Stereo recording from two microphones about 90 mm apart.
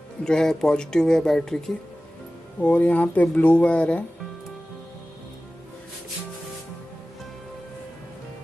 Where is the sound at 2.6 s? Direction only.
15° left (ahead or behind).